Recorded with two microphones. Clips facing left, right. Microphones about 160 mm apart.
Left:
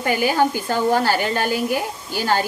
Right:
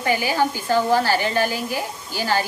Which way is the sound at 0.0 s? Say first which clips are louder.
Left 2 dB; 50° left (ahead or behind).